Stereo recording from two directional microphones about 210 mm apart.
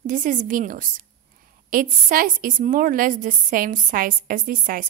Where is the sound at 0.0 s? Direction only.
40° right (ahead or behind).